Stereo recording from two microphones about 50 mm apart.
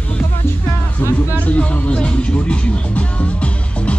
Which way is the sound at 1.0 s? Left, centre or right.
Left.